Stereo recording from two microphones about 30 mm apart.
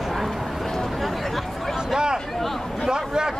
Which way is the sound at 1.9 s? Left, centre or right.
Right.